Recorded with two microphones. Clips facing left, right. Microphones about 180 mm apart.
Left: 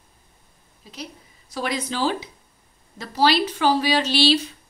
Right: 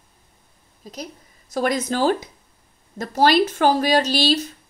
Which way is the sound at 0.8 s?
45° right (ahead or behind).